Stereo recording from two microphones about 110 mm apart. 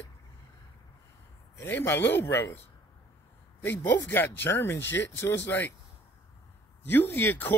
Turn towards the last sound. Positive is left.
turn(degrees=20)  # may be behind; listen again after turning